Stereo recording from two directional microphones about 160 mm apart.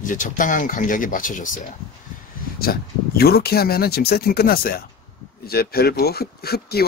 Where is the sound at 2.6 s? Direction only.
75° left (ahead or behind).